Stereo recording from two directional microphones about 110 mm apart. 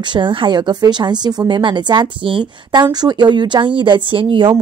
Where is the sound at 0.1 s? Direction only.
45° right (ahead or behind).